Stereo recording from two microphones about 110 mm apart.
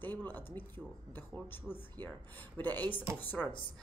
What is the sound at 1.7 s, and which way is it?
Speech, centre (ahead or behind).